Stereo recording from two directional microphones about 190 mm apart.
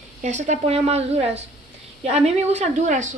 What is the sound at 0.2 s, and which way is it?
A woman's voice, 40° right (ahead or behind).